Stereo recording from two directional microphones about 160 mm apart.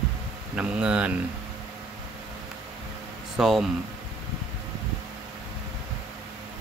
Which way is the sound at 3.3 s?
Centre (ahead or behind).